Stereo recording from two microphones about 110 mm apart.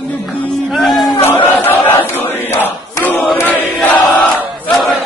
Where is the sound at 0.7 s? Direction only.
Centre (ahead or behind).